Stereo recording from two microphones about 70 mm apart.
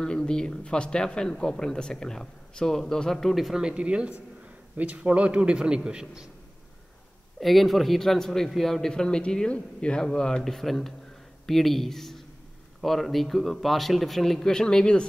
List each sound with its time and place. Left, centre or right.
0.0 s speech: centre
3.7 s a man's voice: centre
7.3 s a man's voice: centre